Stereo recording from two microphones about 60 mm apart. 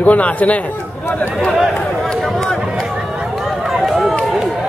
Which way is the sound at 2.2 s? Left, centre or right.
Centre.